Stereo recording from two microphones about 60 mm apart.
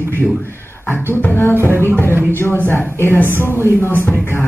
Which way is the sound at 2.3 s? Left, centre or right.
Left.